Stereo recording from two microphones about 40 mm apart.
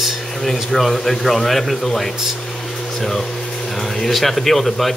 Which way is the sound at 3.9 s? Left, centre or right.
Centre.